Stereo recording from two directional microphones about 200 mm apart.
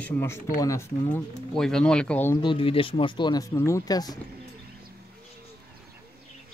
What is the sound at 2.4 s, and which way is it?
Speech, 25° left (ahead or behind).